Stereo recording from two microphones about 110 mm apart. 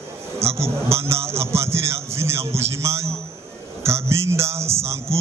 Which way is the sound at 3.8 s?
25° right (ahead or behind).